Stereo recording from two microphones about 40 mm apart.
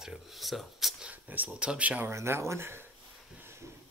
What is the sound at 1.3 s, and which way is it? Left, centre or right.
Speech, right.